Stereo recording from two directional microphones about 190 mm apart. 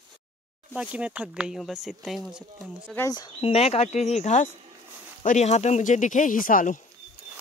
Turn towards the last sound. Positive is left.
turn(degrees=45)  # may be behind; listen again after turning